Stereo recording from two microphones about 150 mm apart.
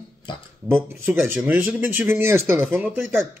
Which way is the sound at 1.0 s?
15° right (ahead or behind).